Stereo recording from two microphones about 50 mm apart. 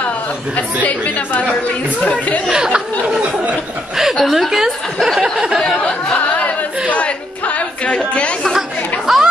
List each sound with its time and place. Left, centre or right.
0.8 s a woman's voice: left
2.5 s a sound: centre
3.9 s speech: centre
5.0 s a sound: centre
6.9 s music: left
8.1 s chatter: left
9.0 s chatter: centre